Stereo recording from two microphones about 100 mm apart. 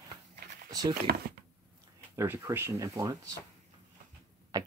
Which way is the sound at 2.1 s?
25° right (ahead or behind).